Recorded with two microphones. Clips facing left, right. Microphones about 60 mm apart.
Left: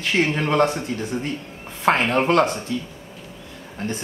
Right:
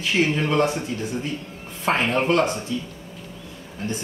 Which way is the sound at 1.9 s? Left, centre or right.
Left.